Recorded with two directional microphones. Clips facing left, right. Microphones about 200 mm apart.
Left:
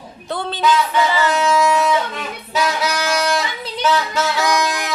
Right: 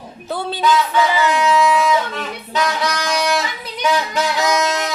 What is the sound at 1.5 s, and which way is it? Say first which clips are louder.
Music: right 1 dB; 45° left (ahead or behind).